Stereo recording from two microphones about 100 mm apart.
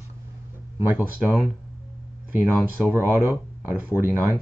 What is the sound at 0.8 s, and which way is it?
Speech, 20° right (ahead or behind).